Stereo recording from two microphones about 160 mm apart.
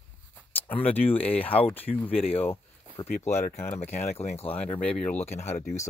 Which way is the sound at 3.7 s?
45° left (ahead or behind).